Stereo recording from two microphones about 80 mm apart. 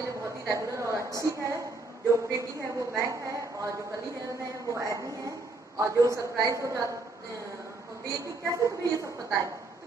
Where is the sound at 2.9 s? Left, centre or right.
Right.